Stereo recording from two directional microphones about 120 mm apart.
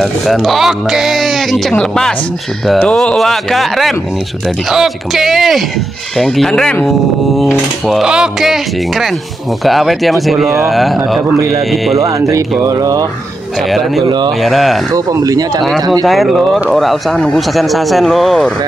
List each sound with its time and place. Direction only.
0.0 s speech: centre (ahead or behind)
12.0 s speech: 25° right (ahead or behind)
13.6 s speech: centre (ahead or behind)
14.0 s speech: 35° right (ahead or behind)
14.4 s speech: centre (ahead or behind)
15.0 s speech: 30° right (ahead or behind)
16.1 s speech: centre (ahead or behind)